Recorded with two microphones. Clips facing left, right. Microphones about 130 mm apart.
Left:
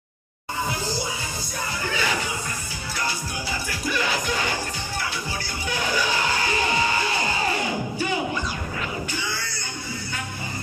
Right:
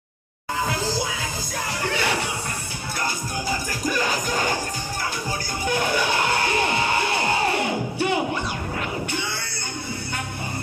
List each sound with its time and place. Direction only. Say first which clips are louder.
1.8 s music: right 2 dB; 65° right (ahead or behind)
3.4 s music: right 3 dB; 45° right (ahead or behind)
5.7 s music: right 3 dB; 55° right (ahead or behind)